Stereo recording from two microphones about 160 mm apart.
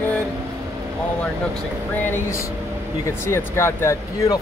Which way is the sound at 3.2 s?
15° left (ahead or behind).